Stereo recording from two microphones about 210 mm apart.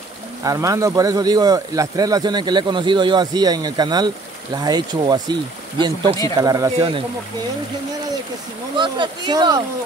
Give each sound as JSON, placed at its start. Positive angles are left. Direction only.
{"t": 0.4, "sound": "speech", "side_deg": -15}
{"t": 8.7, "sound": "speech", "side_deg": -20}